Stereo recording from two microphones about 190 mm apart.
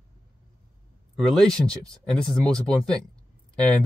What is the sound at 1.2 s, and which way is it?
Speech, 5° left (ahead or behind).